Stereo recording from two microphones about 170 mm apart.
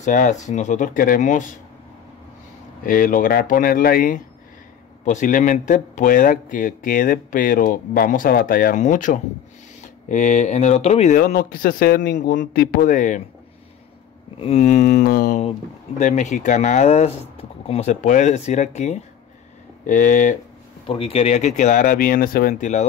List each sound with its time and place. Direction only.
0.0 s speech: 50° left (ahead or behind)
2.8 s speech: 55° left (ahead or behind); by 11.1 s 40° left (ahead or behind)
11.1 s speech: 55° left (ahead or behind); by 12.4 s 85° left
12.4 s speech: 50° left (ahead or behind)
14.4 s speech: 40° left (ahead or behind); by 15.4 s 55° left (ahead or behind)
16.0 s speech: 45° left (ahead or behind)
20.8 s speech: 35° left (ahead or behind)